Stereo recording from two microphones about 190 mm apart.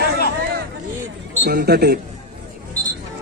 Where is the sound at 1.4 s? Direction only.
55° right (ahead or behind).